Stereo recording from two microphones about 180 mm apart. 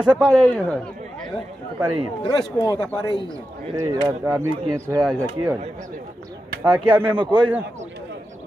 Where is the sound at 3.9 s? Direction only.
20° right (ahead or behind).